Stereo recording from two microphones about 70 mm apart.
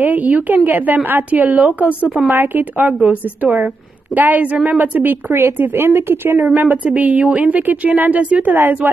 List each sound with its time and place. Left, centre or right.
0.0 s speech: right
1.9 s a woman's voice: left
2.3 s speech: right
5.6 s speech: right